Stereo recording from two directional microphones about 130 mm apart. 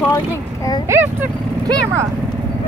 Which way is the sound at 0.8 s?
15° right (ahead or behind).